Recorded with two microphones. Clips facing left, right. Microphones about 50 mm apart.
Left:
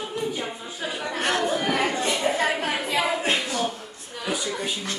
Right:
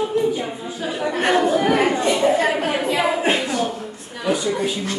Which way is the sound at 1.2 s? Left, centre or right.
Centre.